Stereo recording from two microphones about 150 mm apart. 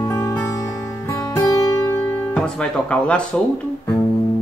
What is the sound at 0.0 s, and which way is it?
Music, 25° left (ahead or behind).